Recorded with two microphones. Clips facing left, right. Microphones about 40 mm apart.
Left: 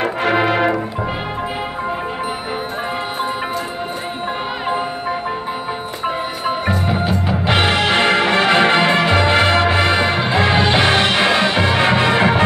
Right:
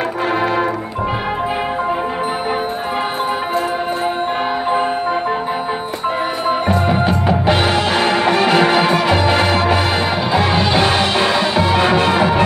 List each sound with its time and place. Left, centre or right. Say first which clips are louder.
6.9 s music: right 4 dB; centre
7.4 s music: left 2 dB; left
9.9 s music: even; centre
11.0 s music: left 1 dB; left